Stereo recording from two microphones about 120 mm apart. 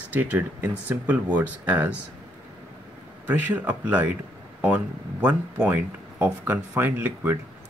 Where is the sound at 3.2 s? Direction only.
15° right (ahead or behind).